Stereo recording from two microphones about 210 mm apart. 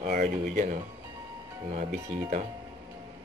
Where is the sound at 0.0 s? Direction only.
40° right (ahead or behind).